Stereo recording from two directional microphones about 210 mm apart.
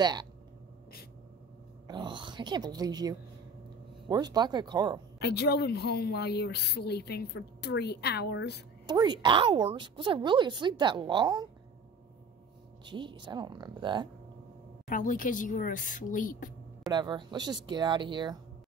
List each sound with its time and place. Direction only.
0.0 s a woman's voice: 20° right (ahead or behind)
1.9 s a woman's voice: 20° right (ahead or behind)
5.2 s speech: 50° left (ahead or behind)
8.8 s a woman's voice: 20° right (ahead or behind)
12.8 s a woman's voice: 20° right (ahead or behind)
14.9 s speech: 40° left (ahead or behind)
16.9 s a woman's voice: 20° right (ahead or behind)